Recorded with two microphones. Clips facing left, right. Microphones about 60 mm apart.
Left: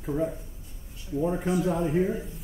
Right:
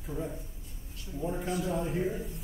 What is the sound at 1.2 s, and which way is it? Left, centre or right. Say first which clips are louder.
Speech: left 7 dB; left.